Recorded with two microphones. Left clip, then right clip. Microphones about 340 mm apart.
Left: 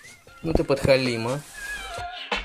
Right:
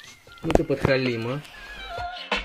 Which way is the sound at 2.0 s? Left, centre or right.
Centre.